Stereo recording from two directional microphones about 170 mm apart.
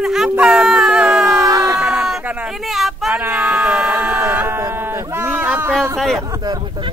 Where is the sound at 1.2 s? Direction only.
20° right (ahead or behind).